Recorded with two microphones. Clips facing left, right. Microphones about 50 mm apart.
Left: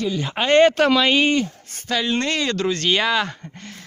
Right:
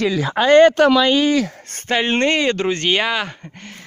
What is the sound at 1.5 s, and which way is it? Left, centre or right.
Speech, right.